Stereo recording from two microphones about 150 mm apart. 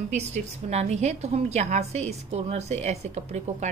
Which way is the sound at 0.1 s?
50° right (ahead or behind).